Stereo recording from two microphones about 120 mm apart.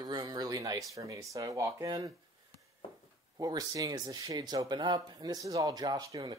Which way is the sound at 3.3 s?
30° right (ahead or behind).